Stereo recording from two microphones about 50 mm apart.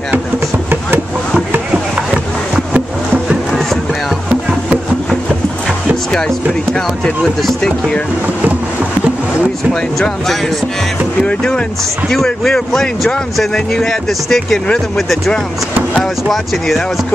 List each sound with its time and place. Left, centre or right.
6.1 s speech: centre
9.9 s speech: centre
11.2 s speech: centre